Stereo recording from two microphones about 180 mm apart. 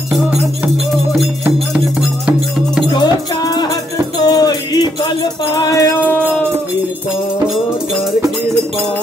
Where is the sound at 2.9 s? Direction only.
20° left (ahead or behind).